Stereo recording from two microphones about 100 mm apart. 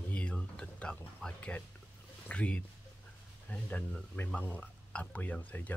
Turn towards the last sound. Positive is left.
turn(degrees=15)  # may be behind; listen again after turning